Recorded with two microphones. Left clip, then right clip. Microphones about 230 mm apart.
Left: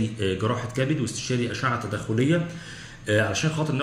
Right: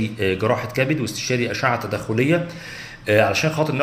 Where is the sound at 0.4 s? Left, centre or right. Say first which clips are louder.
Right 7 dB; centre.